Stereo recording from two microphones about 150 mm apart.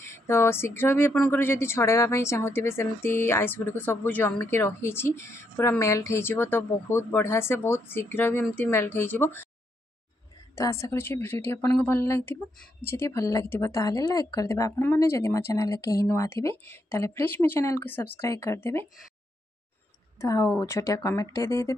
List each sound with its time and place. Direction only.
0.3 s a woman's voice: 15° left (ahead or behind)
10.5 s a woman's voice: 20° left (ahead or behind)
20.2 s a woman's voice: 20° left (ahead or behind)